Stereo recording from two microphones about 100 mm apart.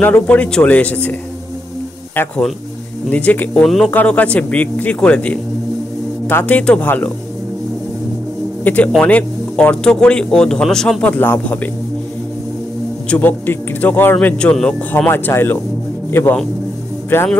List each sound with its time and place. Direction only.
0.0 s speech: 15° left (ahead or behind)
2.2 s speech: 20° left (ahead or behind)
3.6 s speech: 5° left (ahead or behind)
3.9 s speech: 15° left (ahead or behind)
8.6 s speech: 15° left (ahead or behind)
11.1 s speech: 20° left (ahead or behind)
13.1 s speech: 15° left (ahead or behind)